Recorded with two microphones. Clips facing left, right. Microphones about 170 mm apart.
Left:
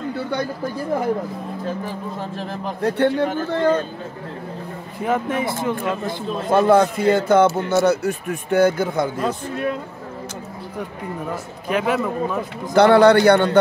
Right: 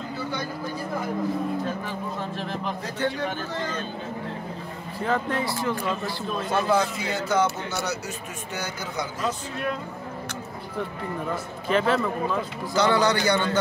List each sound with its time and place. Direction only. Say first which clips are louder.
2.8 s a man's voice: left 12 dB; 60° left (ahead or behind)
5.0 s speech: left 4 dB; 15° left (ahead or behind)
6.0 s speech: left 6 dB; 50° left (ahead or behind)
11.7 s speech: left 2 dB; 10° left (ahead or behind)
12.7 s a man's voice: left 10 dB; 60° left (ahead or behind)